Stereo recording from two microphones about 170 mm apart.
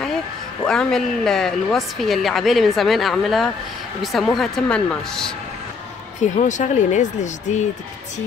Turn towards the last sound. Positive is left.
turn(degrees=45)  # may be behind; listen again after turning